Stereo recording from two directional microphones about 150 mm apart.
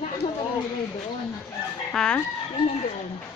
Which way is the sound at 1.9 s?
5° left (ahead or behind).